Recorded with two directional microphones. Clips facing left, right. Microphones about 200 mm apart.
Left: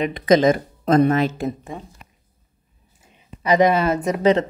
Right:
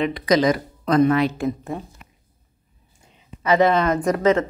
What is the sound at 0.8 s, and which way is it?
Speech, 45° left (ahead or behind).